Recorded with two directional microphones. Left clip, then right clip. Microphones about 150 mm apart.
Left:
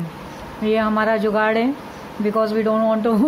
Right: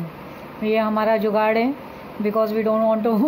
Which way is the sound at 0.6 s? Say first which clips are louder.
Left 1 dB; 10° left (ahead or behind).